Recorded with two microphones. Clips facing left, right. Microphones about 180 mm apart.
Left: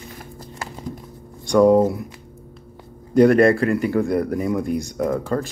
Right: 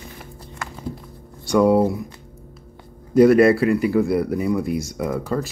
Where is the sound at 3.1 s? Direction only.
5° right (ahead or behind).